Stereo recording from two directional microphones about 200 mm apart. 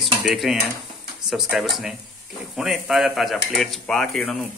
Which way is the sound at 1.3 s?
Centre (ahead or behind).